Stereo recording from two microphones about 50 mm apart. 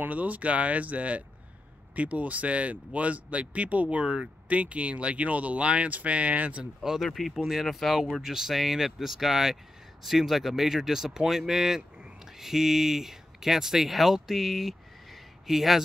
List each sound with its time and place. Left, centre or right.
0.0 s speech: right
6.8 s speech: centre